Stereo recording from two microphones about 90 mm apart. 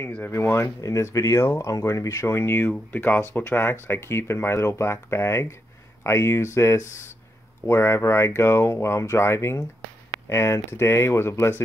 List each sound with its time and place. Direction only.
0.3 s speech: 30° left (ahead or behind)